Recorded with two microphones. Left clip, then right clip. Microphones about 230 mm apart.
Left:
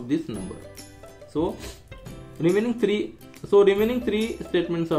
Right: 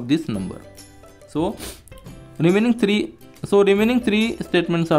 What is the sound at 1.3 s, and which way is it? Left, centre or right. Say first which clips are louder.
Speech: right 3 dB; right.